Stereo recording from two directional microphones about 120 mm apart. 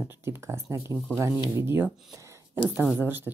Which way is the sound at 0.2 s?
20° right (ahead or behind).